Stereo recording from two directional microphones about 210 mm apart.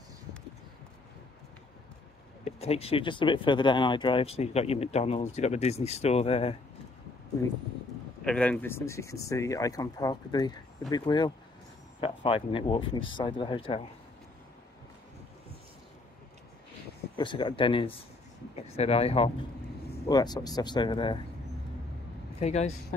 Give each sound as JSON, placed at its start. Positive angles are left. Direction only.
{"t": 2.4, "sound": "speech", "side_deg": 30}
{"t": 8.2, "sound": "speech", "side_deg": 5}
{"t": 17.2, "sound": "speech", "side_deg": 20}
{"t": 22.4, "sound": "speech", "side_deg": 30}